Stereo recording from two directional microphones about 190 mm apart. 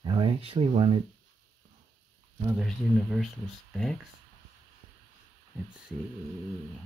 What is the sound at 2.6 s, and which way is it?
Speech, centre (ahead or behind).